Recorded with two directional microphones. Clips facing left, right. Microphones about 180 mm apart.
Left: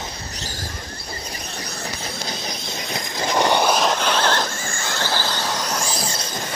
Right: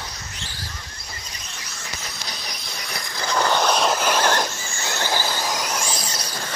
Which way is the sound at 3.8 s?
5° right (ahead or behind).